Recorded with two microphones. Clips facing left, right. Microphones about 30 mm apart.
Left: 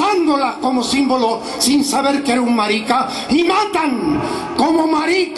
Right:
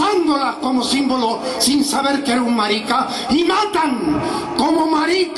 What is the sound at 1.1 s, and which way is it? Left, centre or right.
A man's voice, centre.